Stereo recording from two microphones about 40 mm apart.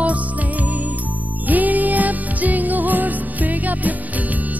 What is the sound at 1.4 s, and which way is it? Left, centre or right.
Music, right.